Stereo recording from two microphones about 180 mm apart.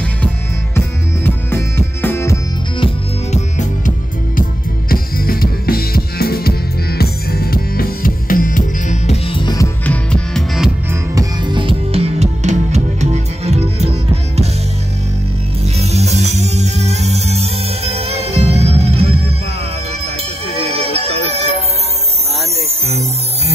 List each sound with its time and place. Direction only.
0.7 s music: 15° left (ahead or behind)
2.8 s music: 40° left (ahead or behind)
4.4 s music: 55° left (ahead or behind); by 9.7 s 25° left (ahead or behind)
9.8 s music: 5° left (ahead or behind)
10.9 s music: 20° right (ahead or behind)
15.8 s music: 35° right (ahead or behind)
20.7 s music: 35° right (ahead or behind)
22.8 s music: 35° right (ahead or behind)